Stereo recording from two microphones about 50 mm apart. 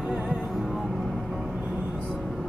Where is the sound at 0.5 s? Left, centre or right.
Centre.